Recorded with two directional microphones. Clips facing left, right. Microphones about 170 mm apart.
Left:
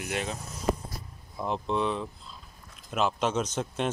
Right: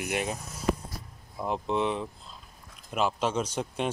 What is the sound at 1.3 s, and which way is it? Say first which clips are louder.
Speech: even; 10° right (ahead or behind).